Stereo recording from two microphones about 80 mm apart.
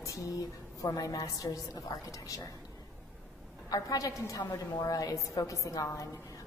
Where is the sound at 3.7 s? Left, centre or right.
Left.